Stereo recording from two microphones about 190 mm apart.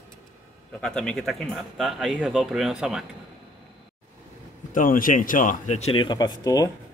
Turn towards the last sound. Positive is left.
turn(degrees=20)  # may be behind; listen again after turning